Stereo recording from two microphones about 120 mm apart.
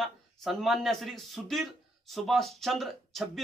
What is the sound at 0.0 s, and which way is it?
Speech, centre (ahead or behind).